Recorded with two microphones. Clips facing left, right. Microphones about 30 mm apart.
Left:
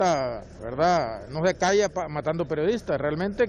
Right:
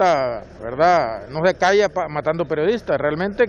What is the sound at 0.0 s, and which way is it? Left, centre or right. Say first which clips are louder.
A man's voice: right 6 dB; right.